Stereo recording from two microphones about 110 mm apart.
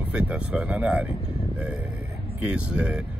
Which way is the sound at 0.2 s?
10° right (ahead or behind).